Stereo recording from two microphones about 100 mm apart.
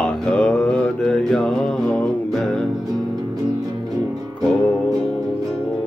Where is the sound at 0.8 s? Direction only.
10° left (ahead or behind).